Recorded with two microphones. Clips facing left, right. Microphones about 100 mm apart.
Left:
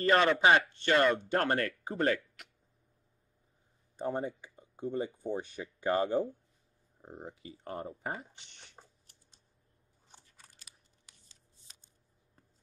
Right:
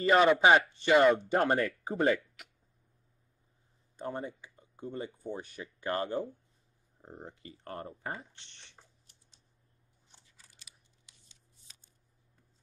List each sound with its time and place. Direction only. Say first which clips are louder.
0.0 s speech: right 2 dB; 10° right (ahead or behind)
4.6 s speech: left 5 dB; 20° left (ahead or behind)
7.0 s speech: left 1 dB; 5° left (ahead or behind)
10.1 s crunch: left 4 dB; 45° left (ahead or behind)